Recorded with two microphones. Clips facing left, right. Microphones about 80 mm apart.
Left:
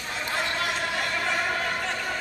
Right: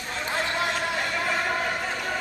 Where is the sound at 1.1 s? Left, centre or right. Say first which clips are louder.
Right 1 dB; centre.